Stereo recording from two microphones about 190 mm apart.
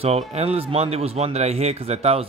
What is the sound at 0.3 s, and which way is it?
A man's voice, 35° right (ahead or behind).